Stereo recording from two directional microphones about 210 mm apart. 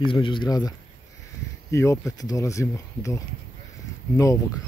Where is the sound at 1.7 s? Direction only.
15° left (ahead or behind).